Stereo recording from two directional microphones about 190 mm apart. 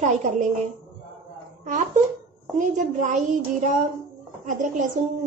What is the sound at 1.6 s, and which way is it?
A woman's voice, 40° right (ahead or behind).